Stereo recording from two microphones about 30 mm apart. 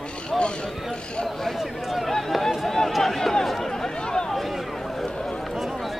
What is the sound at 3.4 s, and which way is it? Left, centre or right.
Chatter, centre.